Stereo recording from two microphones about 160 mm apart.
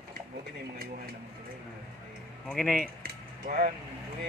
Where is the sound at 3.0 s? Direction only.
65° right (ahead or behind).